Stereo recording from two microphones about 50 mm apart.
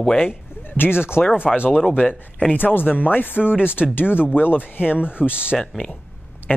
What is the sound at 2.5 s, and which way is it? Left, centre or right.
Speech, left.